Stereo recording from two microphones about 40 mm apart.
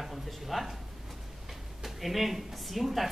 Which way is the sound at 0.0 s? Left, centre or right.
Centre.